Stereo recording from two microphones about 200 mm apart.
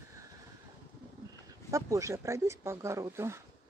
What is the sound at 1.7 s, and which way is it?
Speech, 15° right (ahead or behind).